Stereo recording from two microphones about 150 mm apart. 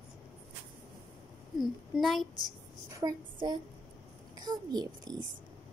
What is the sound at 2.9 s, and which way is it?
A woman's voice, 25° right (ahead or behind).